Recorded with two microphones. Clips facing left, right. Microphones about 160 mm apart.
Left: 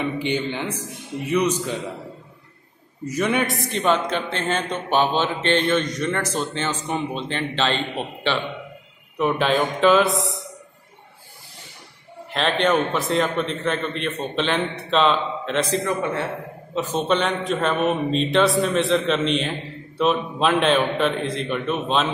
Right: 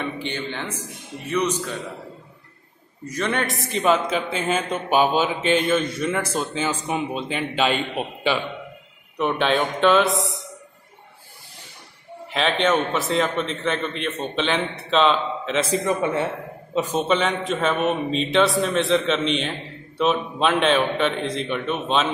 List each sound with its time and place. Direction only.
0.0 s a man's voice: 15° left (ahead or behind)
3.1 s a man's voice: 10° left (ahead or behind); by 8.4 s 10° right (ahead or behind)
9.2 s a man's voice: centre (ahead or behind)
12.3 s a man's voice: centre (ahead or behind)
15.7 s a man's voice: 20° right (ahead or behind); by 22.1 s centre (ahead or behind)